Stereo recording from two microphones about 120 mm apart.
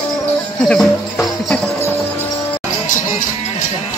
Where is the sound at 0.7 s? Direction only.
5° left (ahead or behind).